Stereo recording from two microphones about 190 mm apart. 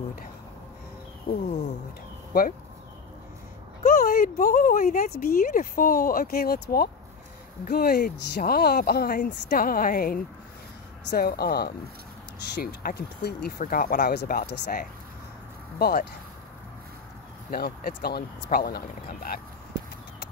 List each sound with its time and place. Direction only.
1.3 s speech: 50° left (ahead or behind)
4.0 s speech: 50° left (ahead or behind)
17.5 s speech: 50° left (ahead or behind)